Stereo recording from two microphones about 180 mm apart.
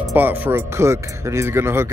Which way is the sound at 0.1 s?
10° right (ahead or behind).